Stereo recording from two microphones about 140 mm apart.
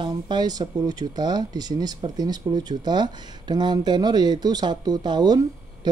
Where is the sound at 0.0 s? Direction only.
30° right (ahead or behind).